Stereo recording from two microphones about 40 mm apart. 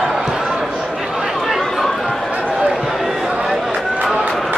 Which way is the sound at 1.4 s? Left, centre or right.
Centre.